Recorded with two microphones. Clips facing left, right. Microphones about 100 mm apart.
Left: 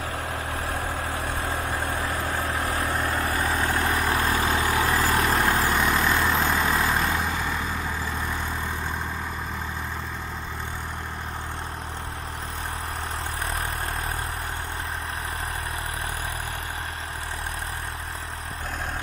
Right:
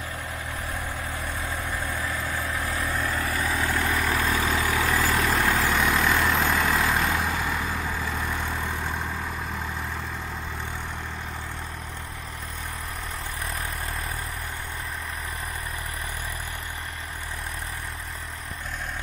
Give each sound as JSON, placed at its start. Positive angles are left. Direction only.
{"t": 0.7, "sound": "vehicle", "side_deg": 65}
{"t": 1.5, "sound": "vehicle", "side_deg": 30}
{"t": 2.0, "sound": "vehicle", "side_deg": 50}
{"t": 2.5, "sound": "vehicle", "side_deg": 35}
{"t": 5.2, "sound": "vehicle", "side_deg": 20}
{"t": 5.7, "sound": "vehicle", "side_deg": 5}